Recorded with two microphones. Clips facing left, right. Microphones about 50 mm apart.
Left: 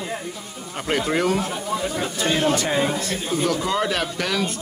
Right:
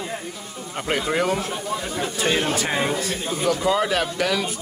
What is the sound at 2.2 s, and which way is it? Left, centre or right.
Speech, centre.